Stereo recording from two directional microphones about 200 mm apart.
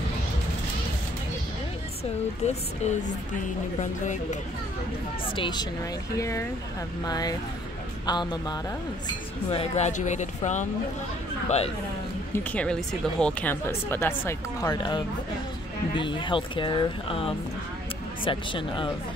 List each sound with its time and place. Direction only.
2.4 s speech: 35° left (ahead or behind)
5.3 s speech: 25° left (ahead or behind)
9.5 s speech: 30° left (ahead or behind)
13.2 s speech: 5° left (ahead or behind); by 18.9 s 25° left (ahead or behind)